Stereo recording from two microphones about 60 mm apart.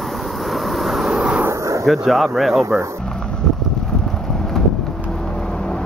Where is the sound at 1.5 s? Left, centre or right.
Right.